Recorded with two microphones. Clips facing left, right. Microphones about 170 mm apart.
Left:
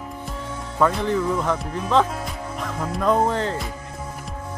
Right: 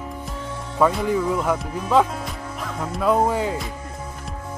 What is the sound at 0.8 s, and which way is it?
Speech, 5° right (ahead or behind).